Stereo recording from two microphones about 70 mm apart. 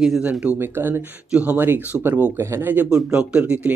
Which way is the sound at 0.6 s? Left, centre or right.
Right.